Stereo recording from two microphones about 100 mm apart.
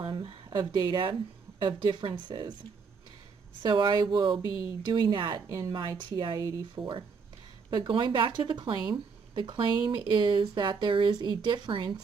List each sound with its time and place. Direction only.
0.5 s speech: 45° right (ahead or behind)
3.6 s speech: 45° right (ahead or behind)
4.4 s speech: 40° right (ahead or behind)
5.1 s speech: 55° right (ahead or behind)